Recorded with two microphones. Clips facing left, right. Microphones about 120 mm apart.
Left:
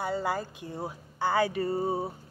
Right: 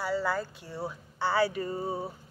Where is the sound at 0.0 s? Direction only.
20° left (ahead or behind).